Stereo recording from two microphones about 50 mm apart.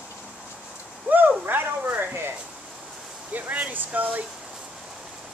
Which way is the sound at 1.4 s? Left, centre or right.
Right.